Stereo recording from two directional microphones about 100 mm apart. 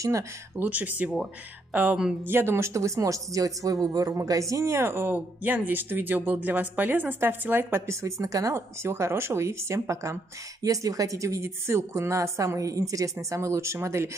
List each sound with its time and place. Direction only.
0.6 s speech: 15° right (ahead or behind)
2.2 s a woman's voice: 25° right (ahead or behind)